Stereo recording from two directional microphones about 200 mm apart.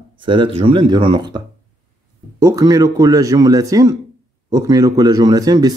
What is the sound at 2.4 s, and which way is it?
Speech, 15° right (ahead or behind).